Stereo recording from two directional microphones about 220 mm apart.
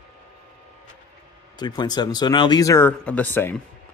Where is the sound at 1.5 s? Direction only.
20° left (ahead or behind).